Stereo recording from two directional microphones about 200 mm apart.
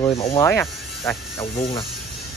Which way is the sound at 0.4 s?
15° left (ahead or behind).